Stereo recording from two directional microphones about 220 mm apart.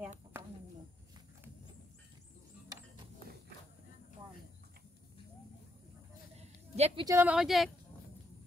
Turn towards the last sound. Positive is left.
turn(degrees=0)  # may be behind; listen again after turning